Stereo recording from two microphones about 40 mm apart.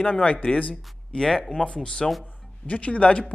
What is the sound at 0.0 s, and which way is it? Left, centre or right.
Speech, left.